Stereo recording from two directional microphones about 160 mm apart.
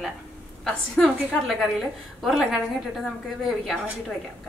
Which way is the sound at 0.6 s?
5° left (ahead or behind).